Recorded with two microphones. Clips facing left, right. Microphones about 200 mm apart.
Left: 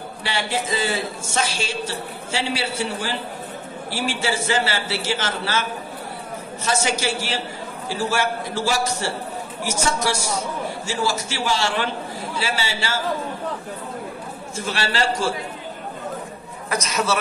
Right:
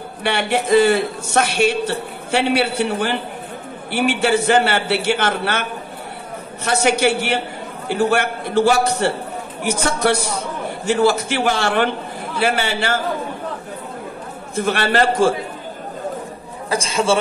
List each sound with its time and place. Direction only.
0.2 s a man's voice: 60° right (ahead or behind)
14.5 s a man's voice: 60° right (ahead or behind)
16.6 s a man's voice: 30° right (ahead or behind)